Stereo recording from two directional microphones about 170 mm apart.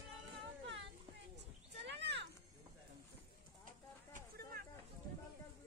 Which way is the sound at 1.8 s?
90° right.